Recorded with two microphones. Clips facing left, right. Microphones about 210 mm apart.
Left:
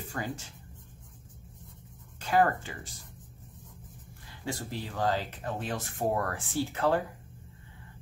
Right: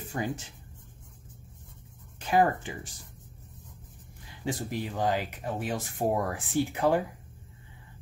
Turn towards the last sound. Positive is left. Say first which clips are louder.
# right 2 dB
turn(degrees=-15)  # may be behind; listen again after turning